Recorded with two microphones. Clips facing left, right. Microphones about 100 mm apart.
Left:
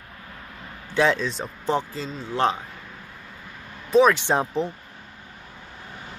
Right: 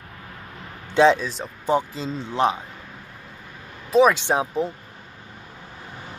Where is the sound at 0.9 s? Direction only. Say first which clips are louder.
Right 5 dB; 20° right (ahead or behind).